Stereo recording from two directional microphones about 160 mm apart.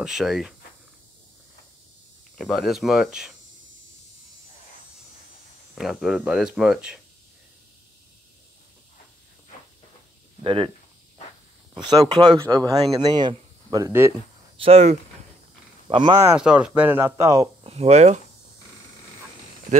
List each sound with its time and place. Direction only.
0.0 s speech: centre (ahead or behind)
2.3 s speech: centre (ahead or behind)
5.8 s speech: centre (ahead or behind)
10.4 s speech: 35° right (ahead or behind)
11.7 s speech: 25° right (ahead or behind)
14.6 s speech: 40° right (ahead or behind)
15.9 s speech: 30° right (ahead or behind)
16.3 s speech: 5° right (ahead or behind)
17.6 s speech: 40° right (ahead or behind)